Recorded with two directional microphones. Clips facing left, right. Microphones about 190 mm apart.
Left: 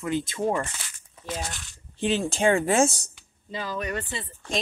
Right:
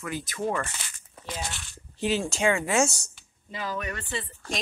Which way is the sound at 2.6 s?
55° left (ahead or behind).